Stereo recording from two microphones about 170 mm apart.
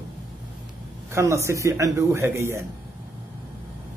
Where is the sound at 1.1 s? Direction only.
15° right (ahead or behind).